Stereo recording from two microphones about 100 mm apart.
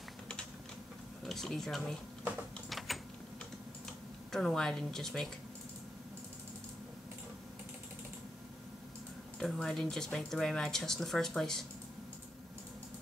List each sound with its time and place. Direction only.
1.2 s speech: 5° left (ahead or behind)
2.9 s typing: centre (ahead or behind)
4.3 s speech: 5° left (ahead or behind)
9.4 s speech: 5° left (ahead or behind)